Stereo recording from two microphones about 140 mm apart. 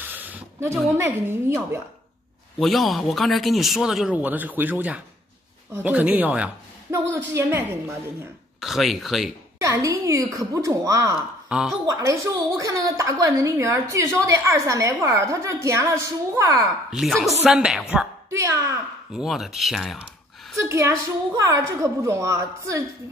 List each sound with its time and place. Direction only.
0.0 s a sound: 10° right (ahead or behind)
0.9 s a woman's voice: 20° right (ahead or behind)
2.6 s a woman's voice: centre (ahead or behind); by 7.6 s 15° right (ahead or behind)
8.5 s speech: centre (ahead or behind)
9.6 s a woman's voice: 20° right (ahead or behind)
11.1 s speech: 5° right (ahead or behind)
11.8 s a woman's voice: 25° right (ahead or behind)
16.9 s a woman's voice: centre (ahead or behind)
18.3 s a woman's voice: 20° right (ahead or behind)
19.1 s speech: centre (ahead or behind)
20.6 s a woman's voice: 20° right (ahead or behind)